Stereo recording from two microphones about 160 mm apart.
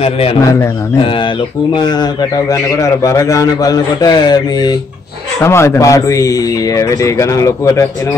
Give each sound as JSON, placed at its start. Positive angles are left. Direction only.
{"t": 0.0, "sound": "a man's voice", "side_deg": 40}
{"t": 0.4, "sound": "a man's voice", "side_deg": 20}
{"t": 1.7, "sound": "a man's voice", "side_deg": 25}